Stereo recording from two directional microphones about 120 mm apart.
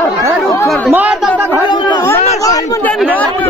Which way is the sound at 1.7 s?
40° left (ahead or behind).